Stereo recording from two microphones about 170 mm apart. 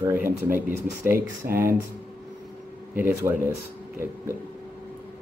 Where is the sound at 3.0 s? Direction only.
15° right (ahead or behind).